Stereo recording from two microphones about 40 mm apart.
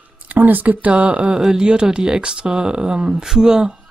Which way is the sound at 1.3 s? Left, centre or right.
Centre.